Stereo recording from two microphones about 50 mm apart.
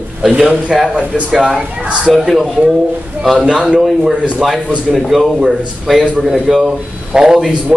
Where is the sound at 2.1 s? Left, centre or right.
Centre.